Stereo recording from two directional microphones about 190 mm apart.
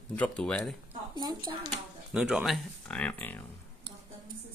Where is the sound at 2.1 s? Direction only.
5° right (ahead or behind).